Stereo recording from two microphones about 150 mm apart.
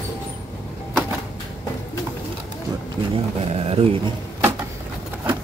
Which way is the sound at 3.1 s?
40° right (ahead or behind).